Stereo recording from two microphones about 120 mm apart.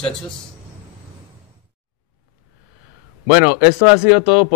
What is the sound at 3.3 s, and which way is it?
Speech, 15° right (ahead or behind).